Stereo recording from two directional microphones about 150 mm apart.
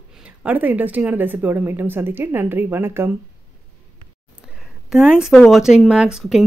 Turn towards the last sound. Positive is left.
turn(degrees=-5)  # may be behind; listen again after turning